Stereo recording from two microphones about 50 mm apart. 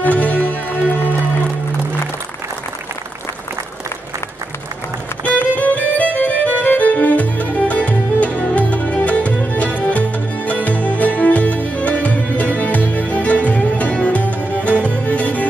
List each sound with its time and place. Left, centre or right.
0.0 s music: left
5.4 s music: left